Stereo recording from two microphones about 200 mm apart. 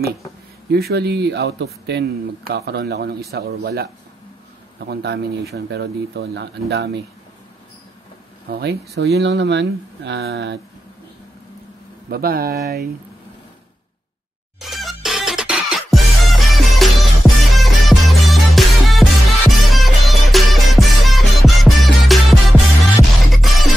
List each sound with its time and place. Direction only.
0.7 s speech: 55° right (ahead or behind)
8.5 s speech: 55° right (ahead or behind)
12.1 s speech: 50° right (ahead or behind)
14.6 s music: centre (ahead or behind)